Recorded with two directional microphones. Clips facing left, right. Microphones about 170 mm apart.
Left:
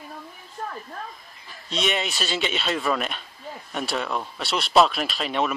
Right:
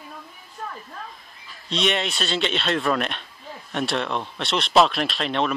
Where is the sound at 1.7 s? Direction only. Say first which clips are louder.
Right 2 dB; centre (ahead or behind).